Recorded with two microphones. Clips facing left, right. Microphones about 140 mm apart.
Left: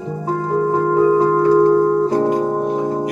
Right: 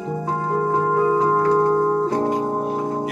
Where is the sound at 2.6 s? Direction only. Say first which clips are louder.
Left 4 dB; centre (ahead or behind).